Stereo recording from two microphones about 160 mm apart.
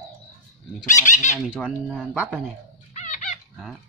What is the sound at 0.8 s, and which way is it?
Speech, 50° left (ahead or behind).